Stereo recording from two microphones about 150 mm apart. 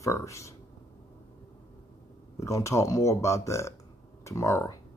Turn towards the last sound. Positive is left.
turn(degrees=20)  # may be behind; listen again after turning